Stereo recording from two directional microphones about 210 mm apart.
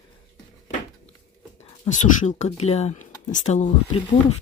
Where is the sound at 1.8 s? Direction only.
35° left (ahead or behind).